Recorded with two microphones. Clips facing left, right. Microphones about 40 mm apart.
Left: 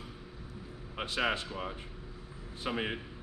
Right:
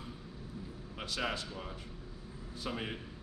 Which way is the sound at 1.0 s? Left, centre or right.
Left.